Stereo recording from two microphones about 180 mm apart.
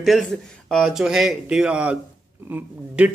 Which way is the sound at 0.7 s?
Centre (ahead or behind).